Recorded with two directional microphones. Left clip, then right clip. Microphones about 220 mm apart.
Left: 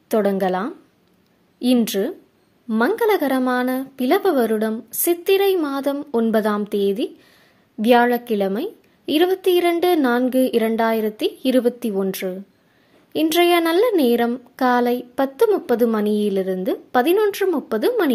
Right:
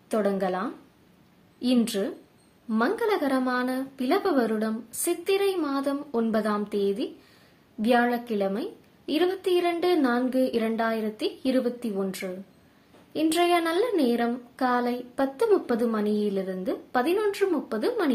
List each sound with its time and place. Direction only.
0.1 s speech: 35° left (ahead or behind)